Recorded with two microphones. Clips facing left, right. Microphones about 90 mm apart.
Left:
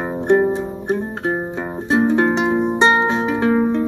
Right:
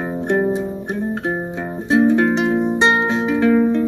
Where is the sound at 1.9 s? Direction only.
25° left (ahead or behind).